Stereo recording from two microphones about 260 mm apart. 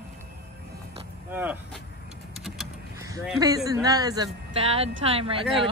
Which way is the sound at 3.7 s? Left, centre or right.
Centre.